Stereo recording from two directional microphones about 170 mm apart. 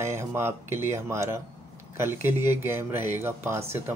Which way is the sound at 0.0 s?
15° right (ahead or behind).